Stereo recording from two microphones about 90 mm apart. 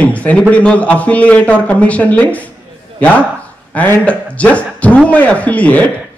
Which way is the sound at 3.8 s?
15° left (ahead or behind).